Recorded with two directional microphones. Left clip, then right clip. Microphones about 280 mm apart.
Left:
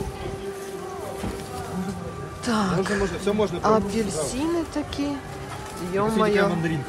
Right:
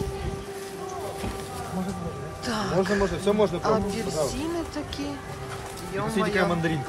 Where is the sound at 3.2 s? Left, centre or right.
Right.